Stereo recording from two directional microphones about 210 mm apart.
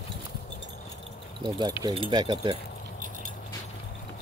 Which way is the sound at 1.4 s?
20° right (ahead or behind).